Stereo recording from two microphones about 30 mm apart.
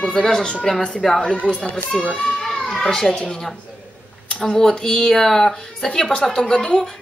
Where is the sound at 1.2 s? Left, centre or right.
Left.